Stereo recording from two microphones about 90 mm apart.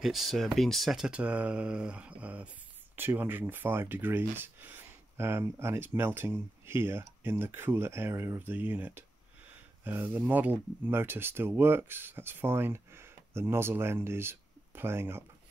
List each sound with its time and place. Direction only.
0.0 s speech: centre (ahead or behind); by 15.2 s 25° right (ahead or behind)